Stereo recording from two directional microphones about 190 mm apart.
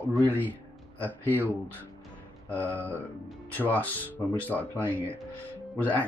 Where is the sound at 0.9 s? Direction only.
10° left (ahead or behind).